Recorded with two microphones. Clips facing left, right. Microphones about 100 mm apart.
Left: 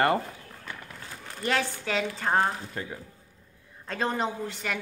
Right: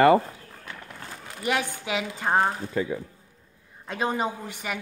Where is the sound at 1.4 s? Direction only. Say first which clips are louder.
Right 1 dB; 15° right (ahead or behind).